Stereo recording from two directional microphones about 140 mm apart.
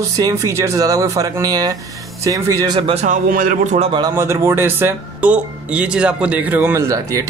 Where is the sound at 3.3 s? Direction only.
75° right (ahead or behind).